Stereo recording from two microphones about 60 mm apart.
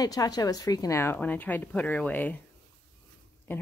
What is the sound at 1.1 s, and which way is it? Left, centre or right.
A woman's voice, left.